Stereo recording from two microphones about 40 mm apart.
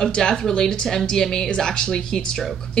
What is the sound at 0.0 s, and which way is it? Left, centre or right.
A woman's voice, centre.